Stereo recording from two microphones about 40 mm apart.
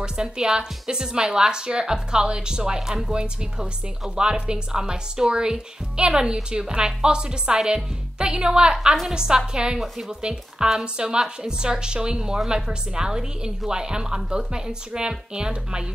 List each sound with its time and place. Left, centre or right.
0.0 s a woman's voice: centre
9.8 s a woman's voice: centre
10.2 s speech: right